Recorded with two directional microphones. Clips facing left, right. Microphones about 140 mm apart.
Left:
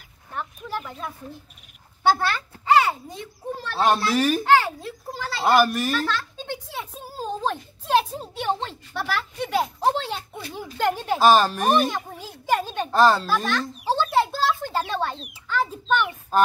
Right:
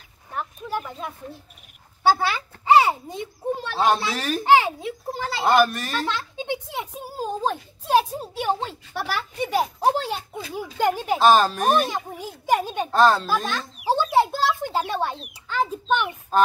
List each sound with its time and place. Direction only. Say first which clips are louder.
0.3 s a sound: right 2 dB; 10° right (ahead or behind)
2.0 s speech: right 1 dB; 10° right (ahead or behind)
2.7 s a child's voice: right 2 dB; 25° right (ahead or behind)
3.7 s speech: left 2 dB; centre (ahead or behind)
6.0 s a child's voice: right 1 dB; 20° right (ahead or behind)
11.1 s speech: even; centre (ahead or behind)
11.9 s a child's voice: right 2 dB; 10° right (ahead or behind)
13.5 s a child's voice: even; 10° right (ahead or behind)